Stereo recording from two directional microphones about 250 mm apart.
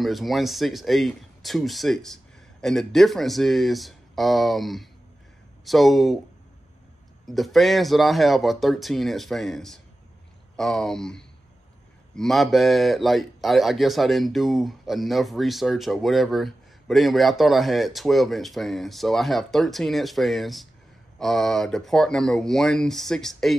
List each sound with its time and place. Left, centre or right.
0.0 s speech: centre
7.2 s speech: centre